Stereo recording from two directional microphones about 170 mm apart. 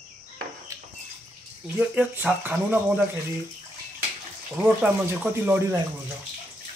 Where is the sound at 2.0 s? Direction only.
10° right (ahead or behind).